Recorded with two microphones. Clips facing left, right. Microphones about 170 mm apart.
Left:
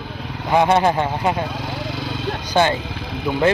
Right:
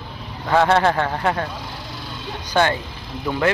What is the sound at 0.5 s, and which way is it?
Speech, 15° left (ahead or behind).